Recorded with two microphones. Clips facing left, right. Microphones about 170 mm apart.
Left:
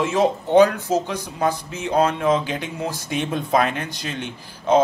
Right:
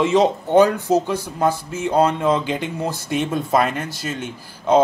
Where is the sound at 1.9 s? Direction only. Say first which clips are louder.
Right 1 dB; 10° right (ahead or behind).